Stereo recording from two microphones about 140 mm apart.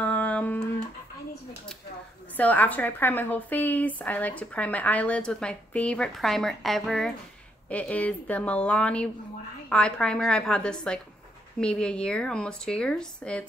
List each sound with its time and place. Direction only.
0.0 s guitar: 10° left (ahead or behind)
2.3 s a woman's voice: 10° left (ahead or behind)